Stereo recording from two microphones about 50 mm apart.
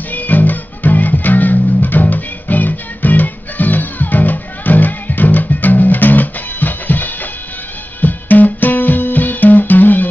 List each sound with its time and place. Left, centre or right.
0.1 s music: left